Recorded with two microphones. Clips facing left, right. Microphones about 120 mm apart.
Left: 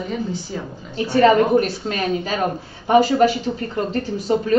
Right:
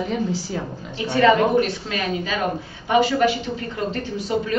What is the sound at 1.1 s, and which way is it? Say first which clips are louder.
A woman's voice: left 2 dB; 40° left (ahead or behind).